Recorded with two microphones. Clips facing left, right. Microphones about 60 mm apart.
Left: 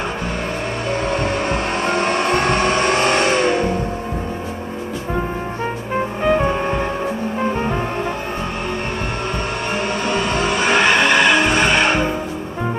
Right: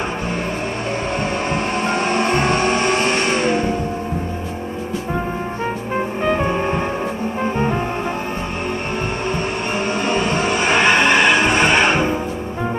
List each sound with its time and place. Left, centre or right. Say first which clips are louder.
2.3 s vehicle: even; left
6.2 s music: left 2 dB; centre
10.0 s vehicle: even; centre